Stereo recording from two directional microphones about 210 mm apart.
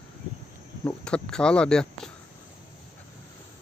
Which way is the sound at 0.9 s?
5° left (ahead or behind).